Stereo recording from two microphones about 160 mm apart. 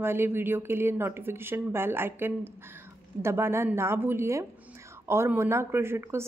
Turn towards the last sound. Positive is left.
turn(degrees=-15)  # may be behind; listen again after turning